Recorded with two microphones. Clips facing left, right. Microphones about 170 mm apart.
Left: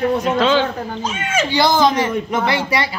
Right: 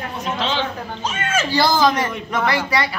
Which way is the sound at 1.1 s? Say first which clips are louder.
Even; 15° left (ahead or behind).